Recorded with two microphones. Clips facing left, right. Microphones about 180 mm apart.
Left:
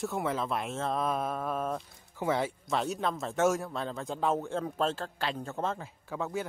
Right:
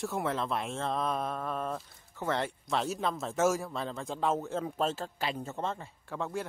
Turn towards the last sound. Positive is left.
turn(degrees=0)  # may be behind; listen again after turning